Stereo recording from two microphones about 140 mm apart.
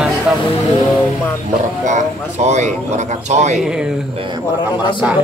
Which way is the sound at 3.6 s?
5° right (ahead or behind).